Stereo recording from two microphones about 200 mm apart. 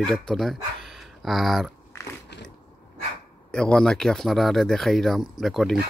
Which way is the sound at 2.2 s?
55° left (ahead or behind).